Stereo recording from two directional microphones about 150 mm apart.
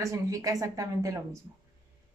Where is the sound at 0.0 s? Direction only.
20° right (ahead or behind).